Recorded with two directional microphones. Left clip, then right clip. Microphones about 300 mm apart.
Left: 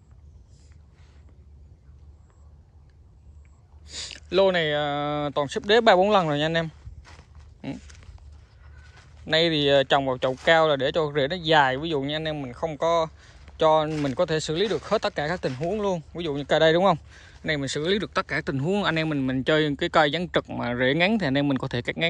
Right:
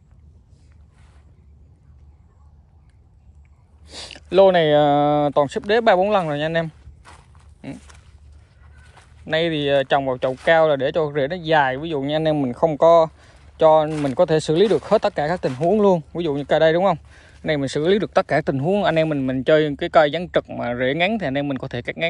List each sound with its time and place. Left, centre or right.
3.8 s speech: centre
8.8 s speech: centre